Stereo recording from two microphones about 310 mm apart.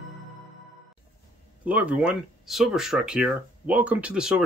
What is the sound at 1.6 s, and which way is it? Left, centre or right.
Speech, centre.